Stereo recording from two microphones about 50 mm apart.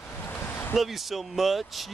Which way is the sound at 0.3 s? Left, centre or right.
Left.